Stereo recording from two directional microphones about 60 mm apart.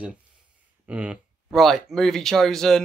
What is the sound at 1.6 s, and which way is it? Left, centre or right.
Speech, centre.